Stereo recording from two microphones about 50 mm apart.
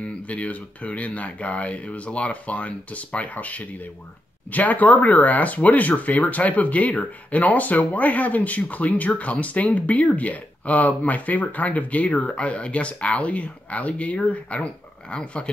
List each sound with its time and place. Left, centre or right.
0.0 s speech: left